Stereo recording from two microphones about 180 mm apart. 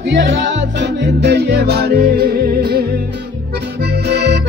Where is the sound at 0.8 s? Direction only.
75° right (ahead or behind); by 2.8 s 55° right (ahead or behind).